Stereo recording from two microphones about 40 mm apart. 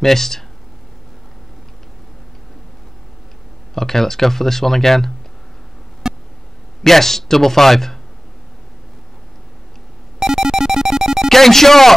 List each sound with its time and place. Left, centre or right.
0.0 s speech: centre
3.7 s speech: centre
6.0 s a sound: centre
6.8 s speech: centre
10.1 s cacophony: centre
11.2 s speech: centre